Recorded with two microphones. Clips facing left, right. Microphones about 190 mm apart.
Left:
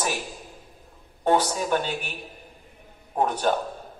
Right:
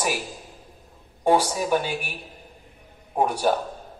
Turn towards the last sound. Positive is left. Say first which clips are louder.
# right 2 dB
turn(degrees=-10)  # may be behind; listen again after turning